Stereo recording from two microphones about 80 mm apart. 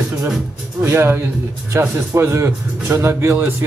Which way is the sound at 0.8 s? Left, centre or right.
Right.